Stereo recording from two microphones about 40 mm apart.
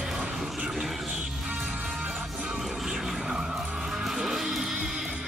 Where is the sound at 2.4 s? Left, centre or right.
Centre.